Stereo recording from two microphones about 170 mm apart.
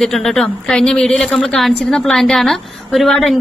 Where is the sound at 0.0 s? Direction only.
5° left (ahead or behind).